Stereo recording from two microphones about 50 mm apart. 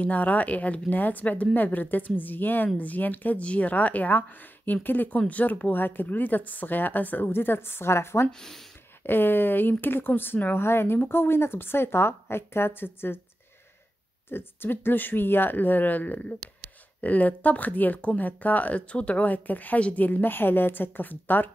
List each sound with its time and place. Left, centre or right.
0.0 s speech: left
8.3 s speech: centre
9.0 s speech: left
14.3 s speech: left